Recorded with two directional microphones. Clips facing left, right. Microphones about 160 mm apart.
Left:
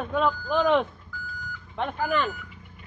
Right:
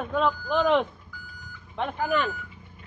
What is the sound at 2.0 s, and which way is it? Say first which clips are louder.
Speech: even; 5° right (ahead or behind).